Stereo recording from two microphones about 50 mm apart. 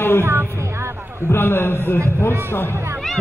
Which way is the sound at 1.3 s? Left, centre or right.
Left.